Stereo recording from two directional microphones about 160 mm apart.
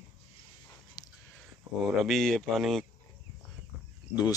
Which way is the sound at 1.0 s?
25° left (ahead or behind).